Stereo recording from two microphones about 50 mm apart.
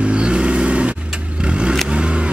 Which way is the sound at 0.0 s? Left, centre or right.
Right.